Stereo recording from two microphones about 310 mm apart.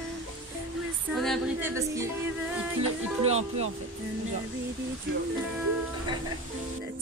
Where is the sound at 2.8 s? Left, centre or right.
Centre.